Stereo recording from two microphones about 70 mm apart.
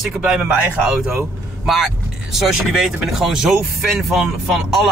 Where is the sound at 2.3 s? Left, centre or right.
Centre.